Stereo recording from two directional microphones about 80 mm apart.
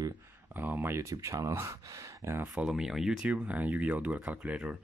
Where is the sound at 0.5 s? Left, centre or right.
Right.